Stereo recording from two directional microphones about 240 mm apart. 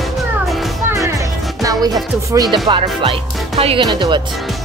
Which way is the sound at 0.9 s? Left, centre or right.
Centre.